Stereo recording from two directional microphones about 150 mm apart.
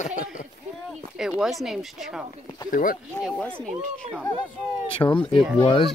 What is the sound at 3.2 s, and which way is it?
Speech, 5° left (ahead or behind).